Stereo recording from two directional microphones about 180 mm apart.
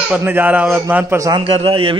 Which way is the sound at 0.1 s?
10° right (ahead or behind).